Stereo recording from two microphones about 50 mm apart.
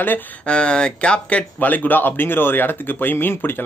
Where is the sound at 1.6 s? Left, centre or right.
Left.